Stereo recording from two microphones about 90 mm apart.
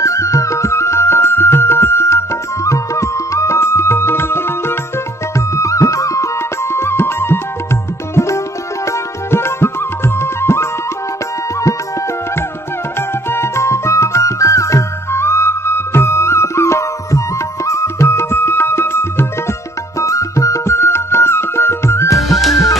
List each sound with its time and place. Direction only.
0.0 s music: 35° left (ahead or behind)
13.3 s music: 30° left (ahead or behind)
22.4 s music: centre (ahead or behind)